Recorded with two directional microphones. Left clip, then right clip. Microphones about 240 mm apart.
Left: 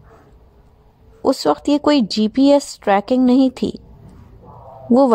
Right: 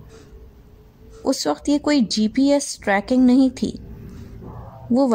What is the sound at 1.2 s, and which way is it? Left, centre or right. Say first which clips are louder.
Speech: left 5 dB; left.